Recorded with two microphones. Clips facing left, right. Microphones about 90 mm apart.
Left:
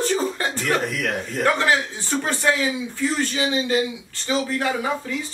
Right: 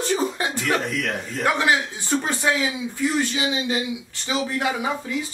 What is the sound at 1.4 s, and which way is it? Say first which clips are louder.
A man's voice: left 1 dB; 15° right (ahead or behind).